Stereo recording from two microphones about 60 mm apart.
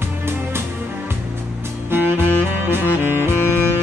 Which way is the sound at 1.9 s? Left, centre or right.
Right.